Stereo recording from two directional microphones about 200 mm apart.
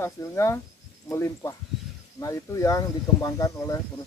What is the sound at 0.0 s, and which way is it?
Speech, 15° left (ahead or behind).